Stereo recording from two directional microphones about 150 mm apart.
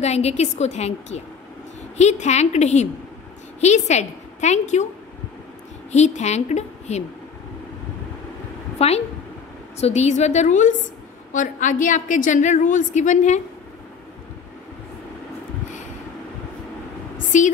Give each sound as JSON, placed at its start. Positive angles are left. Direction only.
{"t": 0.0, "sound": "a woman's voice", "side_deg": 45}
{"t": 5.9, "sound": "a woman's voice", "side_deg": 50}
{"t": 8.7, "sound": "a woman's voice", "side_deg": 45}
{"t": 17.3, "sound": "a woman's voice", "side_deg": 55}